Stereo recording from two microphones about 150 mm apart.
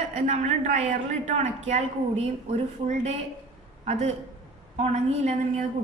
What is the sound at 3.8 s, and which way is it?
A man's voice, 50° right (ahead or behind).